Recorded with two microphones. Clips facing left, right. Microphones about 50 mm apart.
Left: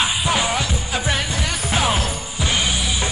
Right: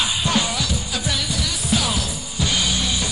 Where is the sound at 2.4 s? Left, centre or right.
Left.